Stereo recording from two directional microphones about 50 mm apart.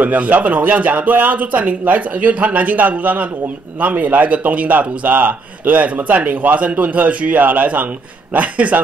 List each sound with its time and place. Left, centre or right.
0.0 s speech: right